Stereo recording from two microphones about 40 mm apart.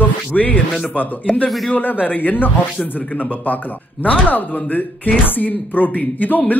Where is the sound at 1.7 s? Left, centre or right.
Left.